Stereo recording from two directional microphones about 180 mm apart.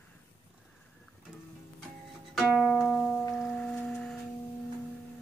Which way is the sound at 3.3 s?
5° left (ahead or behind).